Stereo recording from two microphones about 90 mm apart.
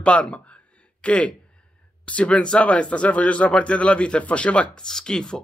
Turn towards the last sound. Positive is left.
turn(degrees=10)  # may be behind; listen again after turning